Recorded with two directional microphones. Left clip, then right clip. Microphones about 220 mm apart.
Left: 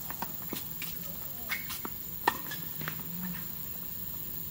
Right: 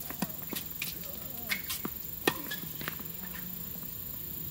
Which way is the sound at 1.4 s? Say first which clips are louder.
Right 1 dB; 20° right (ahead or behind).